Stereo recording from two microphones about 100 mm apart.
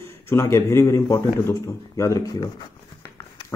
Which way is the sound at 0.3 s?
25° left (ahead or behind).